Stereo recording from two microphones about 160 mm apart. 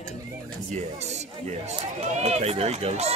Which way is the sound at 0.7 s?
45° right (ahead or behind).